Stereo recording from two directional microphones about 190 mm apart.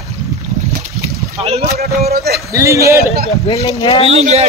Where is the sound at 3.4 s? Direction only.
35° left (ahead or behind).